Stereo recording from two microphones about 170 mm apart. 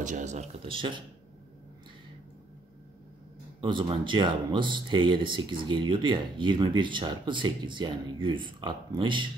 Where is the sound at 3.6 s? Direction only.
30° right (ahead or behind).